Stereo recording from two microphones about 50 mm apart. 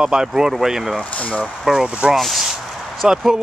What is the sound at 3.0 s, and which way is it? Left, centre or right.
Speech, centre.